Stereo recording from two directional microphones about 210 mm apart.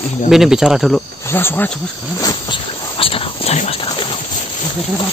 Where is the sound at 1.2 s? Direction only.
10° left (ahead or behind).